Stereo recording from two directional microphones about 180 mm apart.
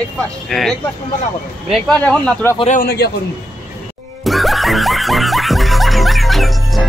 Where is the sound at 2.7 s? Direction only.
55° left (ahead or behind).